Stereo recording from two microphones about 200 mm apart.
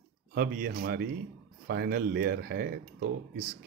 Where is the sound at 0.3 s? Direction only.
50° right (ahead or behind).